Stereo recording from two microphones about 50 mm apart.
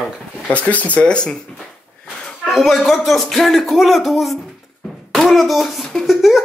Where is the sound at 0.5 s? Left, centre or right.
Left.